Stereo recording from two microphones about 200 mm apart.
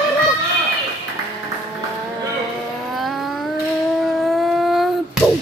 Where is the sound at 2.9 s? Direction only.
Centre (ahead or behind).